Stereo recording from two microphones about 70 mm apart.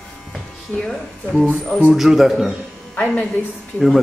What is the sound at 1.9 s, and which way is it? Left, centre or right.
Speech, centre.